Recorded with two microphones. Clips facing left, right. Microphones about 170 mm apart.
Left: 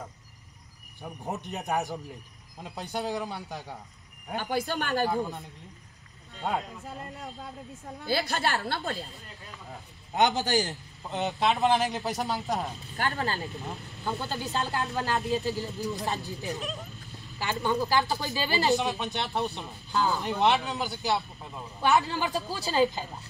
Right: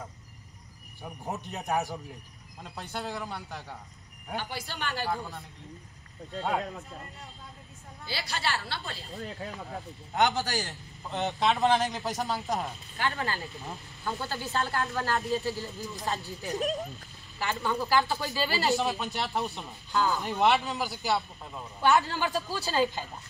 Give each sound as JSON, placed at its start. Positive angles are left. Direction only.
{"t": 1.0, "sound": "speech", "side_deg": 0}
{"t": 2.6, "sound": "speech", "side_deg": 15}
{"t": 4.4, "sound": "a woman's voice", "side_deg": 50}
{"t": 5.0, "sound": "speech", "side_deg": 20}
{"t": 8.0, "sound": "a woman's voice", "side_deg": 50}
{"t": 9.1, "sound": "speech", "side_deg": -65}
{"t": 10.1, "sound": "speech", "side_deg": 20}
{"t": 11.2, "sound": "speech", "side_deg": 0}
{"t": 12.9, "sound": "speech", "side_deg": 40}
{"t": 14.0, "sound": "speech", "side_deg": 20}
{"t": 16.4, "sound": "speech", "side_deg": -40}
{"t": 17.6, "sound": "speech", "side_deg": 20}
{"t": 18.8, "sound": "speech", "side_deg": 0}
{"t": 21.8, "sound": "speech", "side_deg": 15}